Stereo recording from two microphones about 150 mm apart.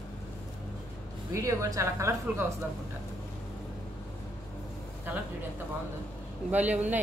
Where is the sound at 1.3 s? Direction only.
20° right (ahead or behind).